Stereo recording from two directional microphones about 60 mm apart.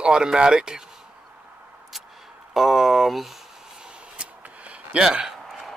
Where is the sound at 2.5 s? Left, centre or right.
Centre.